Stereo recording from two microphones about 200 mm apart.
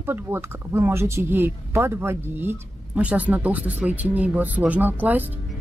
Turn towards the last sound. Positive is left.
turn(degrees=-10)  # may be behind; listen again after turning